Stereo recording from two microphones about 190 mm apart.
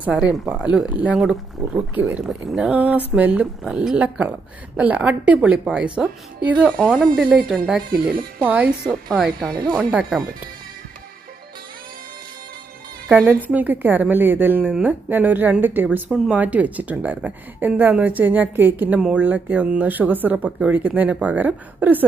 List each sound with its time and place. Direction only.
0.0 s speech: 5° right (ahead or behind)
6.8 s a woman's voice: 5° left (ahead or behind)
7.9 s speech: 50° right (ahead or behind)
8.5 s a woman's voice: 5° right (ahead or behind)
9.5 s speech: 20° right (ahead or behind)
9.8 s a woman's voice: 5° right (ahead or behind)
13.1 s speech: 10° right (ahead or behind)